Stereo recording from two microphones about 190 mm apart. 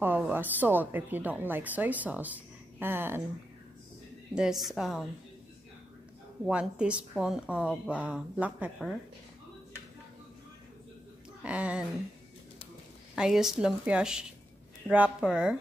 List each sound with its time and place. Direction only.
0.0 s a woman's voice: 10° right (ahead or behind)
4.4 s a woman's voice: centre (ahead or behind)
6.4 s a woman's voice: 5° right (ahead or behind)
11.4 s a woman's voice: 5° right (ahead or behind)
13.1 s a woman's voice: 5° right (ahead or behind)